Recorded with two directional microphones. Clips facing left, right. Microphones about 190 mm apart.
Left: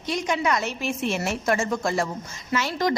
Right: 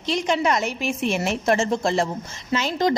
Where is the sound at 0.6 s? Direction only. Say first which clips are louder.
Right 2 dB; 15° right (ahead or behind).